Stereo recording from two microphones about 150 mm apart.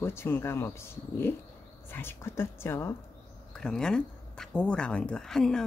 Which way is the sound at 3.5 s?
5° left (ahead or behind).